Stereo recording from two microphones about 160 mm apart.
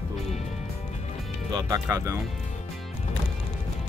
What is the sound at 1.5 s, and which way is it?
Speech, 20° right (ahead or behind).